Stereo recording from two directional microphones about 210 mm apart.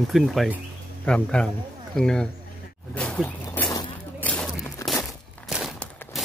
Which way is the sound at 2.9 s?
5° left (ahead or behind).